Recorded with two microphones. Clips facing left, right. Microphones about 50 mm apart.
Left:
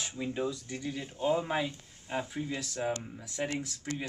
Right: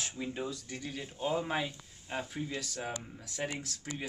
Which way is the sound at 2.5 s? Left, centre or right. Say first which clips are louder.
Left 5 dB; centre.